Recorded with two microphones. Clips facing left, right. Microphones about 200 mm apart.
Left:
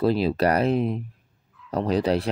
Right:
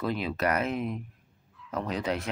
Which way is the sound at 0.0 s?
35° left (ahead or behind).